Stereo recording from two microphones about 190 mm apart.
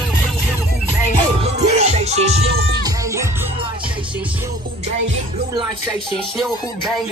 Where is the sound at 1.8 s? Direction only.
35° right (ahead or behind).